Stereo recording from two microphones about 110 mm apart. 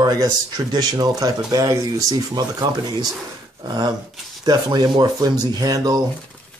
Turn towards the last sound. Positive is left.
turn(degrees=-35)  # may be behind; listen again after turning